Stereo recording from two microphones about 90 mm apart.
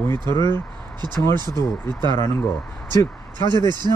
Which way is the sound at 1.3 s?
50° right (ahead or behind).